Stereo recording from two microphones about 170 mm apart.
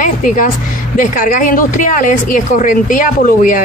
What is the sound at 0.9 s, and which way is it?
A woman's voice, 55° left (ahead or behind).